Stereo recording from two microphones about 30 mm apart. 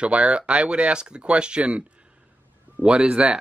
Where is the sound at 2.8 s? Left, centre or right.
Right.